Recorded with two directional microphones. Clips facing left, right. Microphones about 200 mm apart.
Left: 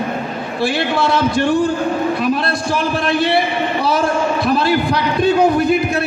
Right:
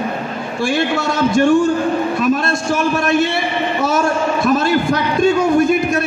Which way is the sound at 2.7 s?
45° right (ahead or behind).